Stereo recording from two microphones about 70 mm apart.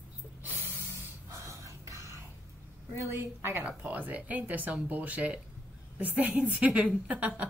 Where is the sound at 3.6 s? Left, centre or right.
Right.